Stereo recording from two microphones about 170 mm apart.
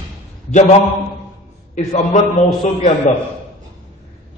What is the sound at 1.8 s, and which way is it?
Speech, 40° left (ahead or behind).